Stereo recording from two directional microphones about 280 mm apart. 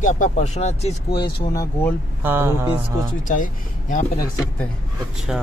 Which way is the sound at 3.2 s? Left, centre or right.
Left.